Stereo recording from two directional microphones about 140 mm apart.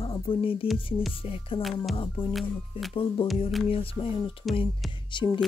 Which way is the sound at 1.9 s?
40° left (ahead or behind).